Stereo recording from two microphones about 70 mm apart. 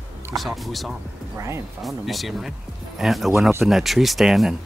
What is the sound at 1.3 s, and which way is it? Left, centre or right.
Speech, right.